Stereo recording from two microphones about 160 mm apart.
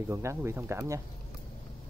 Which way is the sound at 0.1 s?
15° right (ahead or behind).